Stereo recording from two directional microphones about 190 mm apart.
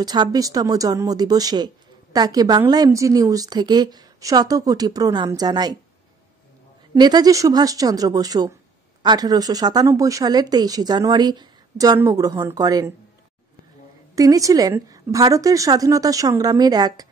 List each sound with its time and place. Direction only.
0.0 s speech: 20° right (ahead or behind)
6.9 s speech: 20° right (ahead or behind)
14.1 s speech: 20° right (ahead or behind)